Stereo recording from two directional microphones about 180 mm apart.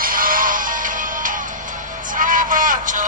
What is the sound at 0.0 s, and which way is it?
Music, 50° right (ahead or behind).